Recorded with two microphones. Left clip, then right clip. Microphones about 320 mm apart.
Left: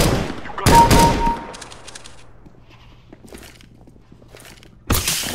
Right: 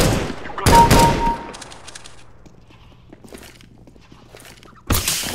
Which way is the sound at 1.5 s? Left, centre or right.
Centre.